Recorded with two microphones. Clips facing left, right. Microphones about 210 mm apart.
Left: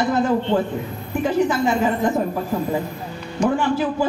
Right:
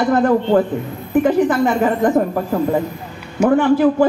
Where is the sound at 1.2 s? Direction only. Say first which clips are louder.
Right 5 dB; 55° right (ahead or behind).